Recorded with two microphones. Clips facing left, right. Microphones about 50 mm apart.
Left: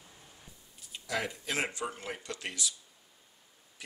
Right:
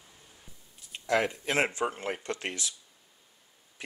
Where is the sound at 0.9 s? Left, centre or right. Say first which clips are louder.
Right 7 dB; right.